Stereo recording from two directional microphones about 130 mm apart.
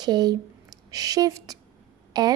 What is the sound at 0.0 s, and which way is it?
A woman's voice, 30° right (ahead or behind).